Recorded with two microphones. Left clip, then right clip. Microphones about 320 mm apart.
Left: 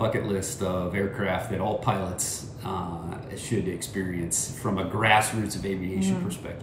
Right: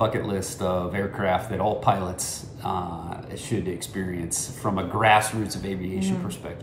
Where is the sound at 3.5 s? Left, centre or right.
Centre.